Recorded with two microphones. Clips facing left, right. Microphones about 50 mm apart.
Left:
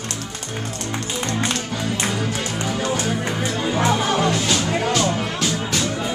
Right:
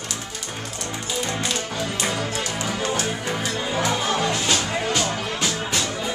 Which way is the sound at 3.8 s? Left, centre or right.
Left.